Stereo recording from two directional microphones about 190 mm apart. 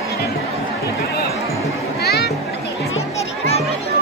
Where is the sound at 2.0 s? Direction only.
60° left (ahead or behind).